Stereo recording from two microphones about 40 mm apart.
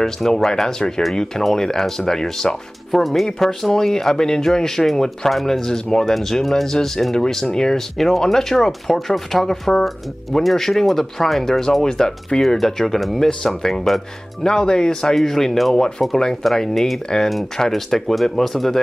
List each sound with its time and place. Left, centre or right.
0.0 s speech: centre
3.3 s speech: centre
14.4 s speech: centre
16.4 s speech: centre